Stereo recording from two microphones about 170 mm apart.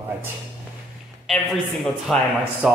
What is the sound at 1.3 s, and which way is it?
Speech, centre (ahead or behind).